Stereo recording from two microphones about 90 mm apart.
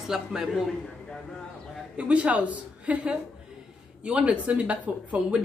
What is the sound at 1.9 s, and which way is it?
A man's voice, 15° right (ahead or behind).